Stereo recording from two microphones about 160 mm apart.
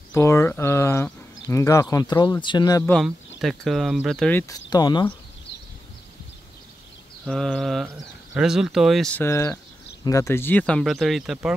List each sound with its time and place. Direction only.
0.1 s speech: 15° left (ahead or behind)
2.9 s speech: centre (ahead or behind)
4.4 s speech: 25° left (ahead or behind)
7.2 s speech: 5° left (ahead or behind)
9.2 s speech: 15° left (ahead or behind); by 11.5 s centre (ahead or behind)